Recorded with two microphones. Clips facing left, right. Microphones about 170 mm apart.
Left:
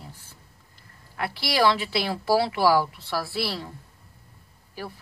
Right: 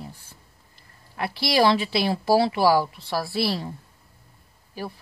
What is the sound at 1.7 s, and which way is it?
A woman's voice, 25° right (ahead or behind).